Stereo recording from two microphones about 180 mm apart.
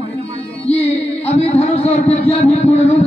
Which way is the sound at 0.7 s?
35° left (ahead or behind).